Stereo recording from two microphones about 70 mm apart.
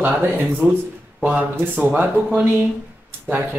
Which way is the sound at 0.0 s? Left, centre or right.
Right.